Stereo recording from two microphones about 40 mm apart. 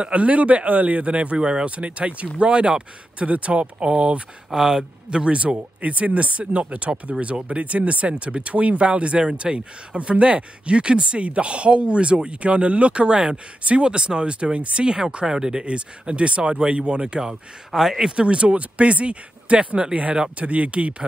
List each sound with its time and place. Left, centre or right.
0.0 s speech: right
4.5 s speech: centre
5.1 s speech: right; by 18.1 s centre
18.1 s speech: right